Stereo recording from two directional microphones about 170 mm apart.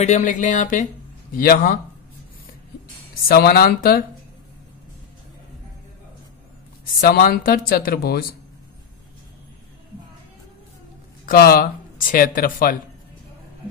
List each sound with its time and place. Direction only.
0.0 s speech: 45° left (ahead or behind)
3.3 s speech: 65° left (ahead or behind)
7.0 s speech: 60° left (ahead or behind)
11.2 s speech: 60° left (ahead or behind)